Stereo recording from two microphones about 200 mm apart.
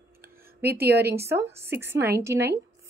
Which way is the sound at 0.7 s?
50° right (ahead or behind).